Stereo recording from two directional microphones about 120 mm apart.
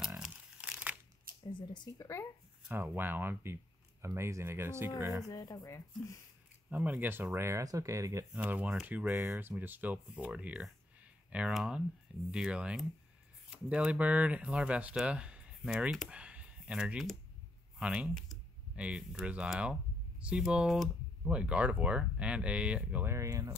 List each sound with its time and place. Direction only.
0.0 s crumpling: 10° right (ahead or behind)
1.4 s speech: 40° left (ahead or behind)
2.7 s speech: 15° right (ahead or behind)
5.3 s speech: 30° left (ahead or behind)
6.7 s speech: 15° right (ahead or behind)
8.3 s speech: 10° right (ahead or behind)
23.0 s speech: 25° right (ahead or behind)